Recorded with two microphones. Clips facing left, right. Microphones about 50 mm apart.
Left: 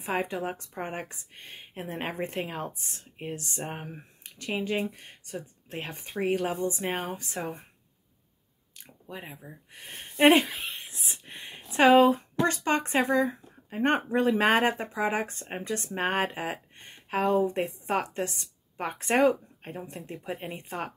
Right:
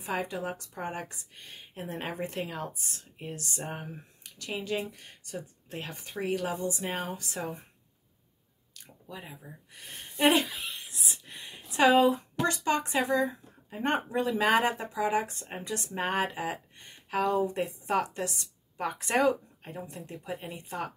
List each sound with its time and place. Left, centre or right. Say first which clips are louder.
0.0 s speech: left 3 dB; left
8.7 s a sound: left 2 dB; left
9.7 s speech: left 2 dB; left